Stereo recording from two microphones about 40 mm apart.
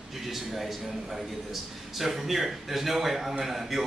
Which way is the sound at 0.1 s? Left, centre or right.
Centre.